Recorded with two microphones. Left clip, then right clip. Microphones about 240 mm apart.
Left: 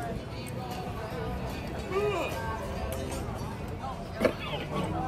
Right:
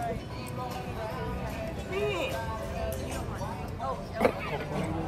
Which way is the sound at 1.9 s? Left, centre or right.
Centre.